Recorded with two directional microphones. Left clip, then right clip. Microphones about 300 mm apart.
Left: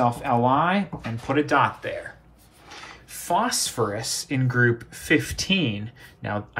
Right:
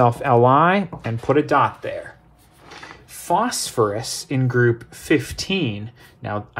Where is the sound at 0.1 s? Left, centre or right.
Right.